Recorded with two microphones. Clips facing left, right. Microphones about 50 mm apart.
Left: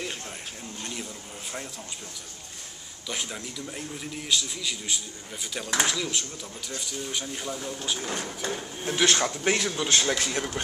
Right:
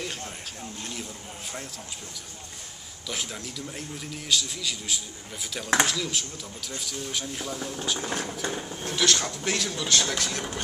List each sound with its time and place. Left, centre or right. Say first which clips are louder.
0.0 s a sound: even; centre
3.1 s a man's voice: even; centre
8.8 s speech: left 2 dB; left